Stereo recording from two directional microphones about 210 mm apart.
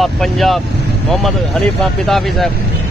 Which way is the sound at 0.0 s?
Centre (ahead or behind).